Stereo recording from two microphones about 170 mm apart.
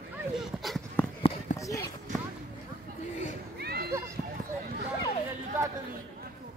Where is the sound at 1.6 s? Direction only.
20° left (ahead or behind).